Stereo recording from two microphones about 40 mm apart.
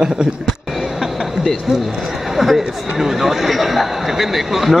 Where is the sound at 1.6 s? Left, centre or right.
Centre.